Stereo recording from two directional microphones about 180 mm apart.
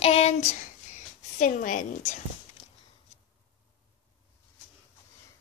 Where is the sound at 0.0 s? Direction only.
35° left (ahead or behind).